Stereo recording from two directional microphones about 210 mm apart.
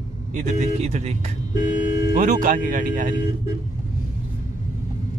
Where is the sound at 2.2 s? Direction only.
40° right (ahead or behind).